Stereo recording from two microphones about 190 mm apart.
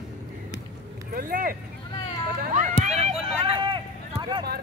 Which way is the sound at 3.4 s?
25° right (ahead or behind).